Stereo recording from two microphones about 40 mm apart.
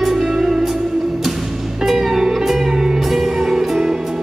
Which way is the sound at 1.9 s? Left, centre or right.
Centre.